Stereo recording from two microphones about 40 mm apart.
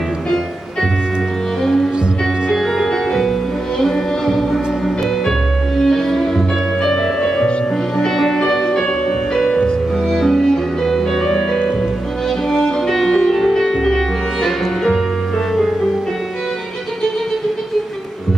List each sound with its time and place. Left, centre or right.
2.5 s music: centre
10.0 s music: centre